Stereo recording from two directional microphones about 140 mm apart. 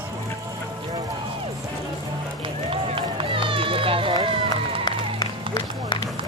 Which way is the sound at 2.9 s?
40° right (ahead or behind).